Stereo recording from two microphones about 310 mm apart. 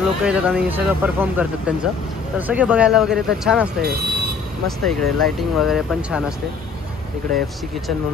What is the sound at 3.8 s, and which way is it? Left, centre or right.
Speech, right.